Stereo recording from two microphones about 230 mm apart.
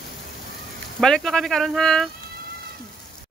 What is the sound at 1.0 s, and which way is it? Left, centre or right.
Speech, centre.